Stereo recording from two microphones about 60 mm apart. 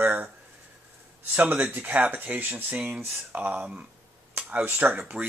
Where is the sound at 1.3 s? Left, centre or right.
Right.